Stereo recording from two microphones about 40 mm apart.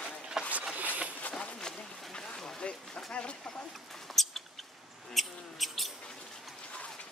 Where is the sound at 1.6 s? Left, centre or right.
Centre.